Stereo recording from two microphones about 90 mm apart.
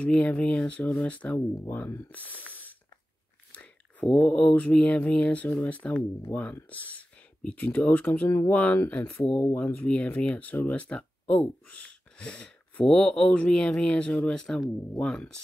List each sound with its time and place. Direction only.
0.0 s speech: 10° left (ahead or behind)
3.5 s speech: 10° left (ahead or behind)